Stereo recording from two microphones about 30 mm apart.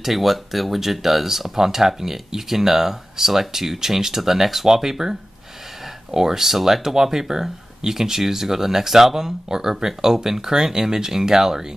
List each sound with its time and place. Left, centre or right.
0.0 s speech: centre
6.1 s speech: centre